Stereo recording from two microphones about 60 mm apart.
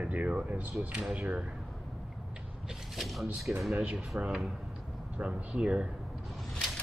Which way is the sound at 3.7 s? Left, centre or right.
Centre.